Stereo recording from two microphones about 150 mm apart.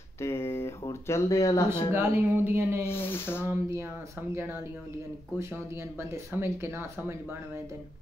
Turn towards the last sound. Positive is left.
turn(degrees=-15)  # may be behind; listen again after turning